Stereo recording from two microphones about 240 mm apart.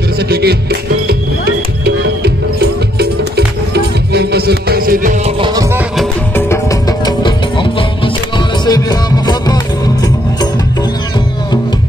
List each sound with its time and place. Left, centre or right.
0.3 s music: right
5.4 s music: centre
5.9 s music: centre